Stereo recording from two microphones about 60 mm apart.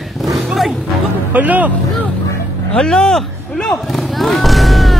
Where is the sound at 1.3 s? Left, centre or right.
Right.